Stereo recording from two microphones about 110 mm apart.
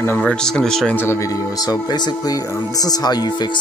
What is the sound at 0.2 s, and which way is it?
Speech, 5° left (ahead or behind).